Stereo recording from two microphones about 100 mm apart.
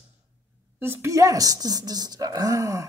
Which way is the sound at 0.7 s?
25° right (ahead or behind).